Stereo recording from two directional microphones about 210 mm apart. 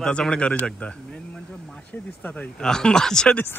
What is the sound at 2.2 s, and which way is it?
Speech, 5° left (ahead or behind).